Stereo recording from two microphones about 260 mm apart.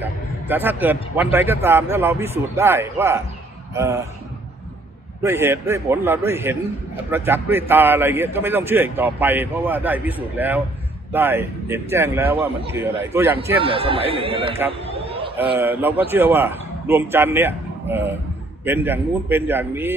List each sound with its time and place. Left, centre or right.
0.0 s a man's voice: centre
5.2 s a man's voice: centre
13.6 s speech: right
14.9 s a sound: right
15.6 s a man's voice: centre